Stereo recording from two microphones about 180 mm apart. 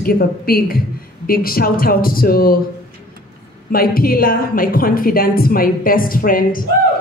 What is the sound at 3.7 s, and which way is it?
A woman's voice, 55° left (ahead or behind).